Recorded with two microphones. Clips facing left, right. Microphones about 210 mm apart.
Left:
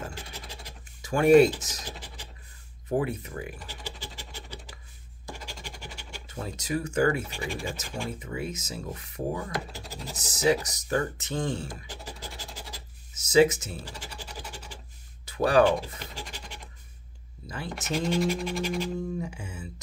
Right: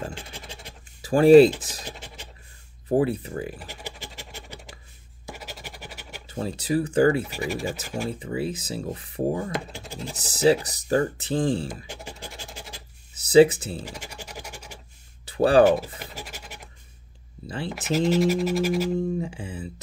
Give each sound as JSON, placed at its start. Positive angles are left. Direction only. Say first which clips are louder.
{"t": 0.1, "sound": "scratch", "louder": "right 3 dB", "side_deg": -25}
{"t": 1.0, "sound": "speech", "louder": "right 5 dB", "side_deg": -30}
{"t": 2.9, "sound": "speech", "louder": "right 6 dB", "side_deg": -30}
{"t": 3.5, "sound": "scratch", "louder": "right 3 dB", "side_deg": -15}
{"t": 5.2, "sound": "scratch", "louder": "right 2 dB", "side_deg": -5}
{"t": 6.2, "sound": "speech", "louder": "right 7 dB", "side_deg": -30}
{"t": 7.2, "sound": "speech", "louder": "right 5 dB", "side_deg": -5}
{"t": 8.1, "sound": "speech", "louder": "right 5 dB", "side_deg": -30}
{"t": 12.2, "sound": "scratch", "louder": "right 2 dB", "side_deg": -25}
{"t": 13.8, "sound": "scratch", "louder": "right 3 dB", "side_deg": -10}
{"t": 15.2, "sound": "a sound", "louder": "right 4 dB", "side_deg": -30}
{"t": 16.0, "sound": "scratch", "louder": "right 2 dB", "side_deg": -10}
{"t": 17.6, "sound": "speech", "louder": "right 6 dB", "side_deg": -5}
{"t": 18.9, "sound": "speech", "louder": "right 6 dB", "side_deg": -30}